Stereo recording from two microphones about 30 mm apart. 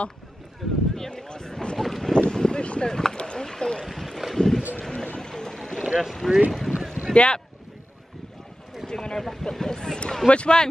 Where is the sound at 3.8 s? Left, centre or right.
Centre.